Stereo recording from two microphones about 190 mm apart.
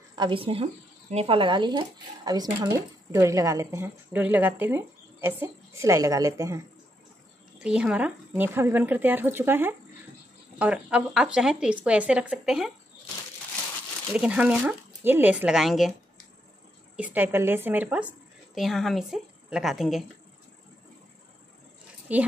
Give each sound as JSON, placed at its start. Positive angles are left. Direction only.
{"t": 0.1, "sound": "speech", "side_deg": -25}
{"t": 7.5, "sound": "speech", "side_deg": -5}
{"t": 14.1, "sound": "speech", "side_deg": -5}
{"t": 16.9, "sound": "a woman's voice", "side_deg": -10}
{"t": 22.1, "sound": "speech", "side_deg": -5}